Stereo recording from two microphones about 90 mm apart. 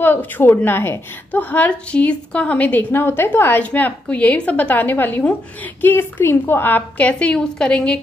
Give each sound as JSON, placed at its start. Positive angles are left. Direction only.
{"t": 0.0, "sound": "a woman's voice", "side_deg": 25}